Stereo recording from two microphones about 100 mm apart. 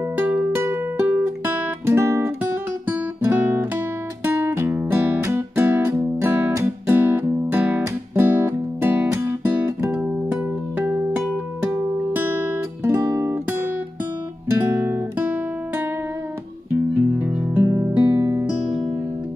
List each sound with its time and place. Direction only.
0.2 s music: 15° right (ahead or behind)
2.9 s guitar: 20° right (ahead or behind)
6.9 s music: 20° right (ahead or behind)
14.6 s guitar: 20° right (ahead or behind)
16.7 s music: 15° right (ahead or behind)
17.6 s music: 30° right (ahead or behind)